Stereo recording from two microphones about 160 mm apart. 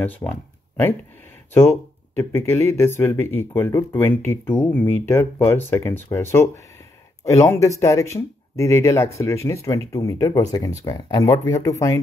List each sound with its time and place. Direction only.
0.0 s speech: 10° left (ahead or behind)